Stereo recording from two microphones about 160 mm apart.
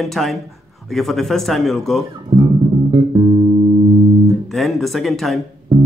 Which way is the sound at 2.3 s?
35° right (ahead or behind).